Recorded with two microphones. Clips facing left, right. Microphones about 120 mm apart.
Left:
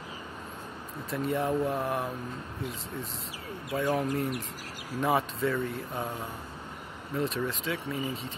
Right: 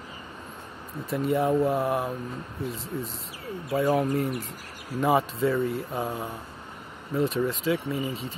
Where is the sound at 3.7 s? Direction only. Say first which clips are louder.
Right 5 dB; 35° right (ahead or behind).